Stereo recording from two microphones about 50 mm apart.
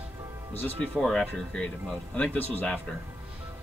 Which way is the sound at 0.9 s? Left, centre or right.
Centre.